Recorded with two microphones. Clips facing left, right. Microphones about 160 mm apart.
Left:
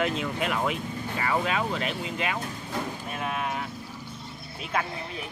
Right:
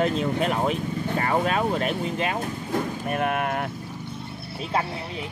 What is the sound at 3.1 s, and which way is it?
Speech, 60° right (ahead or behind).